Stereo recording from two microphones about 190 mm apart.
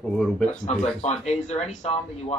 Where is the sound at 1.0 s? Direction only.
35° left (ahead or behind).